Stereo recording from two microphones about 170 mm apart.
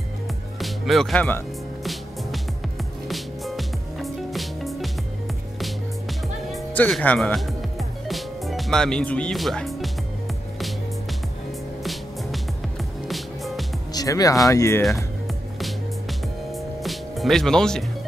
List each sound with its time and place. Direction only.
0.6 s speech: centre (ahead or behind)
3.1 s music: centre (ahead or behind)
11.8 s music: centre (ahead or behind)
13.9 s speech: 20° left (ahead or behind)
15.6 s music: centre (ahead or behind)